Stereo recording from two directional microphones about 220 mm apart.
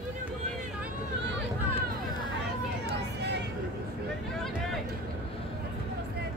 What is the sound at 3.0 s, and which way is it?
Vehicle, 50° right (ahead or behind).